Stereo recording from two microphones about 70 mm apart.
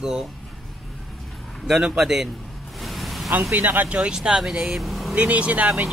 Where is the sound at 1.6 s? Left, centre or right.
Centre.